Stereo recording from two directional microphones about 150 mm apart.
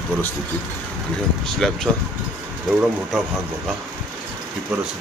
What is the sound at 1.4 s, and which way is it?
Speech, centre (ahead or behind).